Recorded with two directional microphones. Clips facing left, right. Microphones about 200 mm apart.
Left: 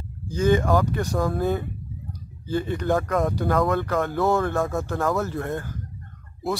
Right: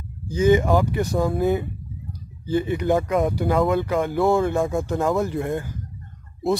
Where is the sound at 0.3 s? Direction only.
15° right (ahead or behind).